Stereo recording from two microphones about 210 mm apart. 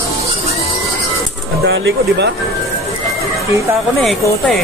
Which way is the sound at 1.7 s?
60° right (ahead or behind).